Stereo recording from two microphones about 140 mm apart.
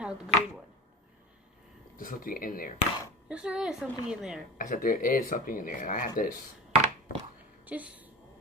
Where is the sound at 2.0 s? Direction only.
75° left (ahead or behind).